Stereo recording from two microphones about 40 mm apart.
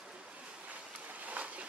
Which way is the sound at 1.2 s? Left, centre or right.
Right.